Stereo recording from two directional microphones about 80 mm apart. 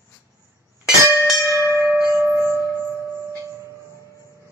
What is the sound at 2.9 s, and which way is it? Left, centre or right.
Music, left.